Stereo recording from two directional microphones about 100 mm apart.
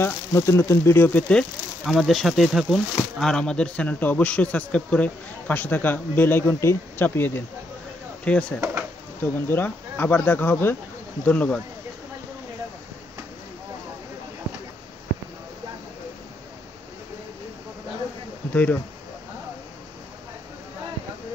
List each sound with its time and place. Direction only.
0.0 s speech: 30° left (ahead or behind)
1.9 s speech: centre (ahead or behind)
18.5 s speech: 15° left (ahead or behind)